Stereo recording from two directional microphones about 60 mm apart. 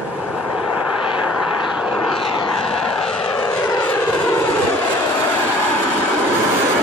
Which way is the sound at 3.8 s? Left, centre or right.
Left.